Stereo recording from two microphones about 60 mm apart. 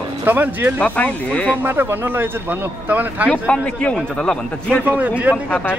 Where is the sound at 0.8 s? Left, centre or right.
Left.